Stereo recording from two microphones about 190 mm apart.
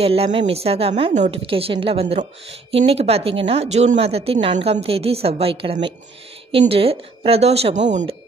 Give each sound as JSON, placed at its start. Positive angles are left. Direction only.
{"t": 0.0, "sound": "a woman's voice", "side_deg": -30}